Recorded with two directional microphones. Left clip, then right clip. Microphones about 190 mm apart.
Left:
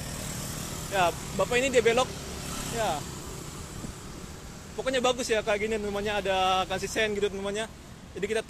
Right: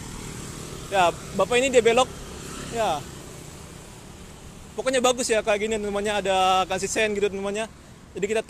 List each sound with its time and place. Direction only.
0.9 s speech: 45° right (ahead or behind)
4.8 s speech: 50° right (ahead or behind)